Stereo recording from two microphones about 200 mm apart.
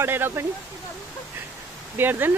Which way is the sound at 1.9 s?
10° right (ahead or behind).